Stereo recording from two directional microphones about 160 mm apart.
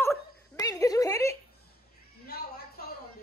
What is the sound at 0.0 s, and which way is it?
Dog, 20° left (ahead or behind).